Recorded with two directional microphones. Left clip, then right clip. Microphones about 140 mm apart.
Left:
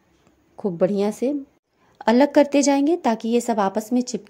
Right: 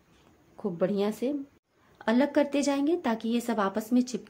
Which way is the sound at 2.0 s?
45° left (ahead or behind).